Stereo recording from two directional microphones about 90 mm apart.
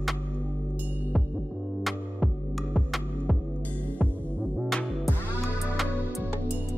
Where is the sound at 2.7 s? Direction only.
Centre (ahead or behind).